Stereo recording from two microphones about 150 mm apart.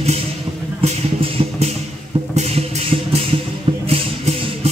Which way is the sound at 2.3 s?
45° right (ahead or behind).